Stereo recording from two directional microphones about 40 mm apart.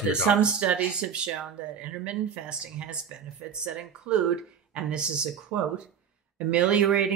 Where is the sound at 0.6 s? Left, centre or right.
Right.